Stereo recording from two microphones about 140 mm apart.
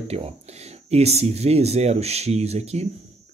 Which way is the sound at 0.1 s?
50° right (ahead or behind).